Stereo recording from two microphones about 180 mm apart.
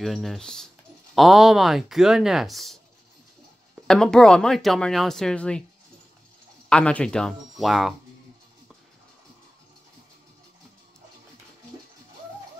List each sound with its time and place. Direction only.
0.0 s speech: centre (ahead or behind)
3.8 s speech: 5° left (ahead or behind)
6.7 s speech: 5° left (ahead or behind)